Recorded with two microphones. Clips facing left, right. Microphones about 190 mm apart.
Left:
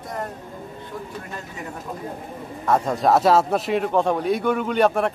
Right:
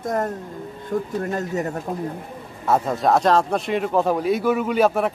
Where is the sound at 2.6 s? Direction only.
5° right (ahead or behind).